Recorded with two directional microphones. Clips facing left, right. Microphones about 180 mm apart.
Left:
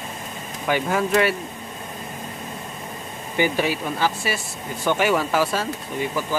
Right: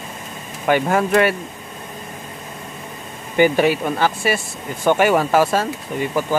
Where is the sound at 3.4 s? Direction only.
55° right (ahead or behind).